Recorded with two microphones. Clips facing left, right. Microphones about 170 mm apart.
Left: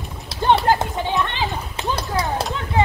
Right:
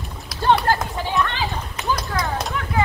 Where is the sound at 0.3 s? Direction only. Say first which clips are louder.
Left 1 dB; 25° left (ahead or behind).